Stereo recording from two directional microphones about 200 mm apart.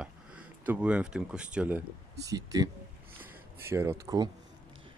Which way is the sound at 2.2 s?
15° right (ahead or behind).